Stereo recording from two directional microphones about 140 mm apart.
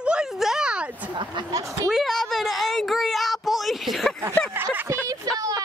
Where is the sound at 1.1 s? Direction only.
35° right (ahead or behind).